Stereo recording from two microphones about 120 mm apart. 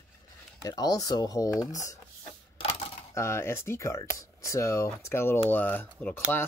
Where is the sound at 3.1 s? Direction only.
25° left (ahead or behind).